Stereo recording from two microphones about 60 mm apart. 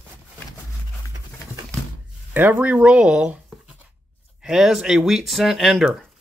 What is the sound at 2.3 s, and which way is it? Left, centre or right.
Speech, right.